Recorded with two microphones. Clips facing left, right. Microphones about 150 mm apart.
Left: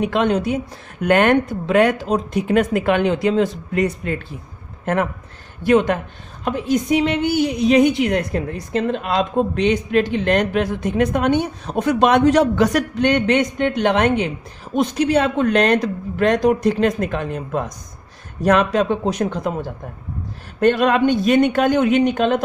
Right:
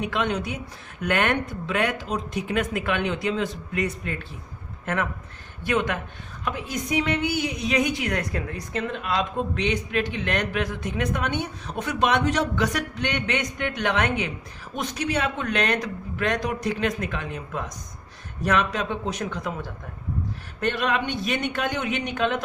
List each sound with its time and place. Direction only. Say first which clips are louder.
0.1 s a woman's voice: left 8 dB; 40° left (ahead or behind)
5.6 s a woman's voice: left 9 dB; 35° left (ahead or behind)